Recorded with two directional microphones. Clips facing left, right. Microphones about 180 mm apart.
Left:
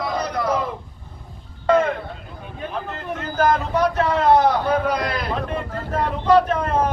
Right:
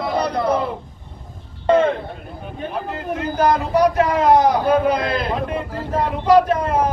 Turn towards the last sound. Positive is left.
turn(degrees=-10)  # may be behind; listen again after turning